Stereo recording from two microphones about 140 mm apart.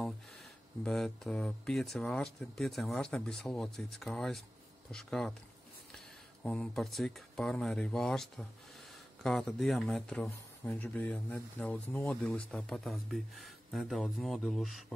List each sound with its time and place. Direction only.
0.8 s speech: 5° left (ahead or behind)
6.4 s speech: 5° left (ahead or behind)